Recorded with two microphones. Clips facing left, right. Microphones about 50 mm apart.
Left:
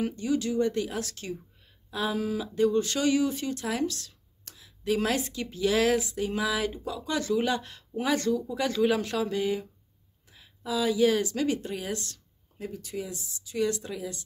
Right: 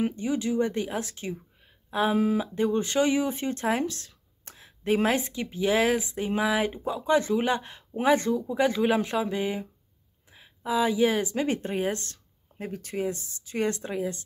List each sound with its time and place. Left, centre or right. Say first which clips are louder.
0.0 s speech: right 1 dB; right